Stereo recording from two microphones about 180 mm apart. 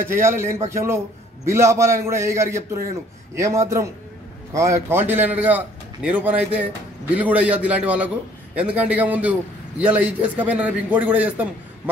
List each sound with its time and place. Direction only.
0.0 s a man's voice: 15° right (ahead or behind)